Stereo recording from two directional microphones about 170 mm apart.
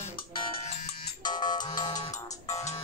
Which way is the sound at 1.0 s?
25° left (ahead or behind).